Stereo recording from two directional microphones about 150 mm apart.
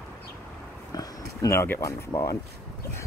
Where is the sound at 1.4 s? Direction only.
15° left (ahead or behind).